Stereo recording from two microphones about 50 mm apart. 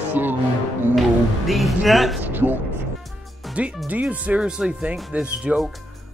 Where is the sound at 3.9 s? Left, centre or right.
Right.